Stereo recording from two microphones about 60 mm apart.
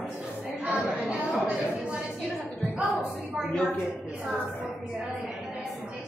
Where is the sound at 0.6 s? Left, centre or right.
Centre.